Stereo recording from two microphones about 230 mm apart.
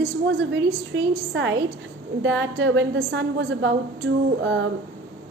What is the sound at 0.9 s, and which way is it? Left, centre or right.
A woman's voice, right.